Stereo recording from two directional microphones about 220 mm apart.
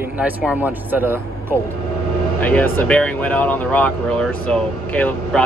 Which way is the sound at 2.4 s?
5° left (ahead or behind).